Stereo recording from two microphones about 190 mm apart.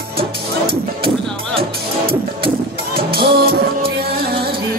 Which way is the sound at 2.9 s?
55° right (ahead or behind).